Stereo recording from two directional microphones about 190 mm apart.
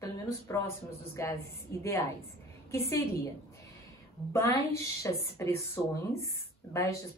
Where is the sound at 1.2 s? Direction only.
15° left (ahead or behind).